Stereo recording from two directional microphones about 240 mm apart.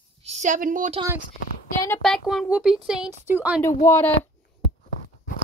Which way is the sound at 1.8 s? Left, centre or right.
Centre.